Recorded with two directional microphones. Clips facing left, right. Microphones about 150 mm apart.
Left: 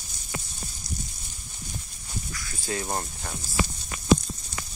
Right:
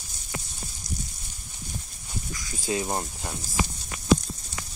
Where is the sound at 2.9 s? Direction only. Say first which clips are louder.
Right 1 dB; 10° right (ahead or behind).